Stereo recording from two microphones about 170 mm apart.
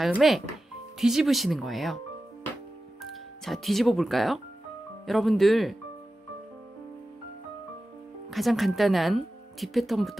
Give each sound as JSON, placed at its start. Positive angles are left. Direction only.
{"t": 0.0, "sound": "speech", "side_deg": 0}
{"t": 3.1, "sound": "speech", "side_deg": 0}
{"t": 8.3, "sound": "speech", "side_deg": 0}